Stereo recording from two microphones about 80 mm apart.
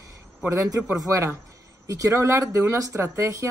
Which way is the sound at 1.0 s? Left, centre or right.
Right.